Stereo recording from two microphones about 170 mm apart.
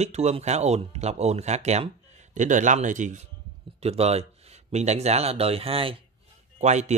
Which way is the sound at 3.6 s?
35° right (ahead or behind).